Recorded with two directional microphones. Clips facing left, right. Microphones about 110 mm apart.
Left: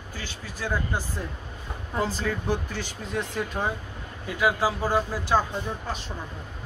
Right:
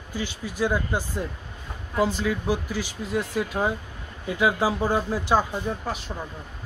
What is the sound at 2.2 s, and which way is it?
Speech, 5° right (ahead or behind).